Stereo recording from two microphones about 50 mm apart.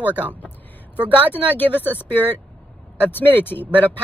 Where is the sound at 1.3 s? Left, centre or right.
Left.